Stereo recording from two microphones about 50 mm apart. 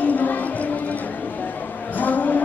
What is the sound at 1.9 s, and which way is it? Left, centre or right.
Vehicle, left.